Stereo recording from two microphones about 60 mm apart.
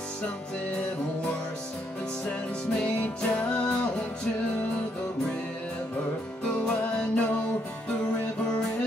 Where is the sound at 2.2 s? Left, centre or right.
Centre.